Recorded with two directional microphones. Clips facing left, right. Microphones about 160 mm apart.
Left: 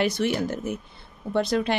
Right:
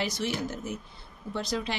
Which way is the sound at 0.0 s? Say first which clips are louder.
Left 7 dB; 60° left (ahead or behind).